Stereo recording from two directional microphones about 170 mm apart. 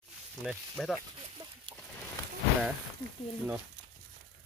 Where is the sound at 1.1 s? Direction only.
30° right (ahead or behind).